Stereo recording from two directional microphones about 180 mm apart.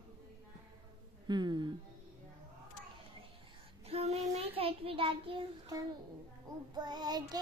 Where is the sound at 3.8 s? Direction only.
35° right (ahead or behind).